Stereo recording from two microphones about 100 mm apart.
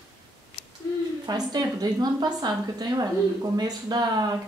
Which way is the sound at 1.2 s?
40° right (ahead or behind).